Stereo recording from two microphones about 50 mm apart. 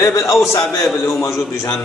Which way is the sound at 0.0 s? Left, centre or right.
Left.